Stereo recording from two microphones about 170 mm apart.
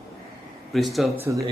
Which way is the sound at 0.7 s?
Centre (ahead or behind).